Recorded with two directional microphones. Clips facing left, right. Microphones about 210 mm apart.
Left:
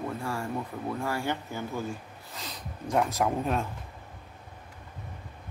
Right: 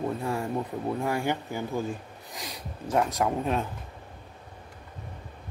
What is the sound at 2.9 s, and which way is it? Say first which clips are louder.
Speech: right 1 dB; centre (ahead or behind).